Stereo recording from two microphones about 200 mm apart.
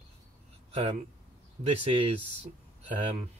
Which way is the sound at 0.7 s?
35° right (ahead or behind).